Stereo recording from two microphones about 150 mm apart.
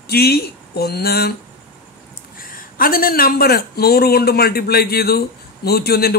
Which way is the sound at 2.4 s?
70° left (ahead or behind).